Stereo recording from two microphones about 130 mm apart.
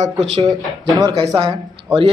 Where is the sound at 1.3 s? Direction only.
45° right (ahead or behind).